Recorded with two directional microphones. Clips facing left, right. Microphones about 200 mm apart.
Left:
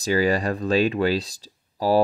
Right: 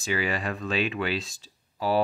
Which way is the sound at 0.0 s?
40° left (ahead or behind).